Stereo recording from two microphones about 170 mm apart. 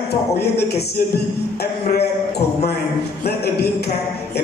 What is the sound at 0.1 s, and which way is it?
Music, 70° left (ahead or behind).